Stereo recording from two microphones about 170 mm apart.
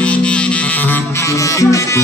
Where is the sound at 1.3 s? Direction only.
20° left (ahead or behind).